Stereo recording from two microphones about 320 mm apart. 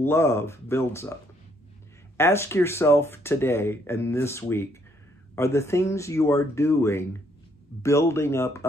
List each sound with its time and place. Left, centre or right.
0.0 s speech: centre
2.1 s speech: centre